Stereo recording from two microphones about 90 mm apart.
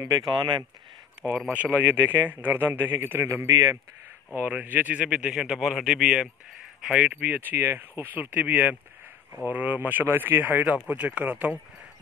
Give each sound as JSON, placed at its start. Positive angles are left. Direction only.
{"t": 0.0, "sound": "speech", "side_deg": -50}
{"t": 1.2, "sound": "a man's voice", "side_deg": -15}
{"t": 7.2, "sound": "speech", "side_deg": -20}